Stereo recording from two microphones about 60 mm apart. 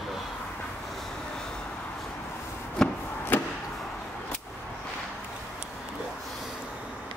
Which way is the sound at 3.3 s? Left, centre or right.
Left.